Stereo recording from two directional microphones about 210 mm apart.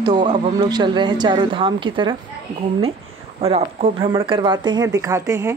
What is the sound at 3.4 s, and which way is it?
Speech, 30° right (ahead or behind).